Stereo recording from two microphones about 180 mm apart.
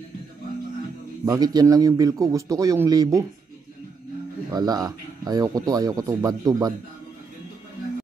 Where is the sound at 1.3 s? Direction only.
20° right (ahead or behind).